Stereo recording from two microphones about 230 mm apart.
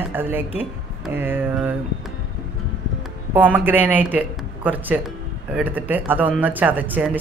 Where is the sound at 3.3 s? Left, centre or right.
Centre.